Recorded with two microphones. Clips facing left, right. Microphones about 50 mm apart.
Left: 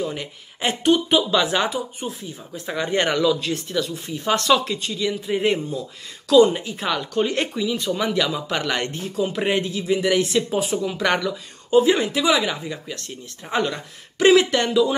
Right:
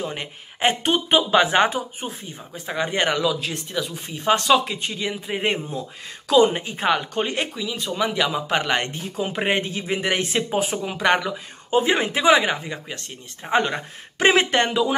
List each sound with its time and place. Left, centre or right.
0.0 s speech: right
2.5 s speech: centre
3.9 s speech: right
7.5 s speech: centre; by 15.0 s right